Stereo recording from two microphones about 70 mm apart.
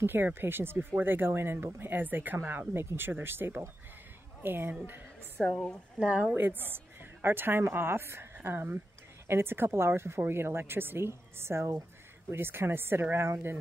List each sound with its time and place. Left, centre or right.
0.0 s a woman's voice: right
5.9 s speech: centre
6.3 s a woman's voice: right